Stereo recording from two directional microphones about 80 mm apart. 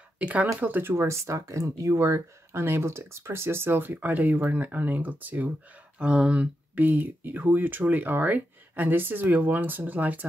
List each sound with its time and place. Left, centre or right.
0.2 s speech: centre